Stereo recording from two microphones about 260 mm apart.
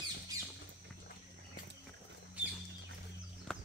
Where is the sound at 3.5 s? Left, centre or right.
Centre.